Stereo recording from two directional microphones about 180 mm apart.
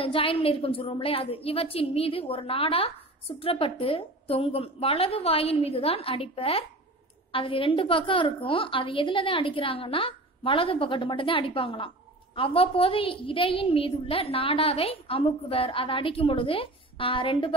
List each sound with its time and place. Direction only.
0.0 s a woman's voice: 30° left (ahead or behind)